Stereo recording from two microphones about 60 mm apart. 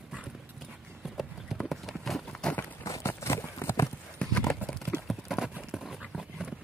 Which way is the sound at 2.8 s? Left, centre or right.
Left.